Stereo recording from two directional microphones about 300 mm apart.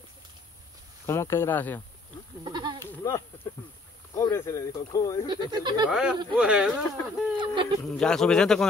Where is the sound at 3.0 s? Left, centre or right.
Centre.